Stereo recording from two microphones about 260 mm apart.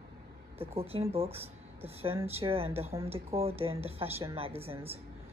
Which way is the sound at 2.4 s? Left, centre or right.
Right.